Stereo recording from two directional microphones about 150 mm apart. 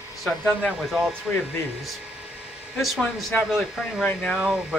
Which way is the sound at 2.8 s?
Centre (ahead or behind).